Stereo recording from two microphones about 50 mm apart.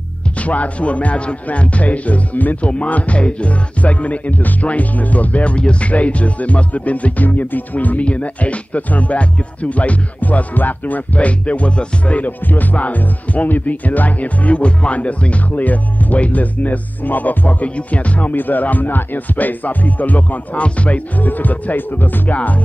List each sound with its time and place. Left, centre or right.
0.4 s speech: left
2.7 s music: left